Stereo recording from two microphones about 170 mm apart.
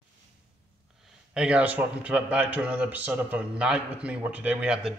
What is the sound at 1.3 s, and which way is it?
A man's voice, 5° right (ahead or behind).